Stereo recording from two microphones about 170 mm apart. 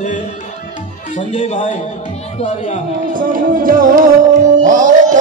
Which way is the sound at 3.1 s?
55° right (ahead or behind).